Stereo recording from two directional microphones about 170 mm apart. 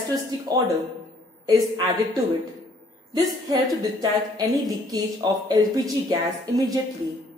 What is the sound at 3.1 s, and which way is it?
A woman's voice, 25° right (ahead or behind).